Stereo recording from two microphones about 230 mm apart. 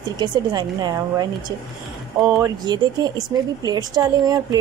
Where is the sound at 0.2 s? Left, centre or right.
Centre.